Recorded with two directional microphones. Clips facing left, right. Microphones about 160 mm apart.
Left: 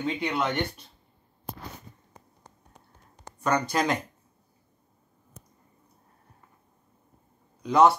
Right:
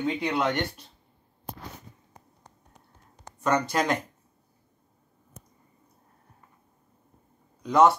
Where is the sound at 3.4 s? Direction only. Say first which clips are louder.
Right 1 dB; centre (ahead or behind).